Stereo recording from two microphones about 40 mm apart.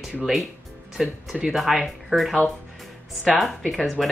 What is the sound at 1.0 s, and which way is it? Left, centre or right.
Speech, centre.